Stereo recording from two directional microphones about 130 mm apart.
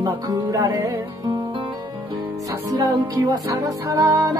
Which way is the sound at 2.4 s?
25° right (ahead or behind).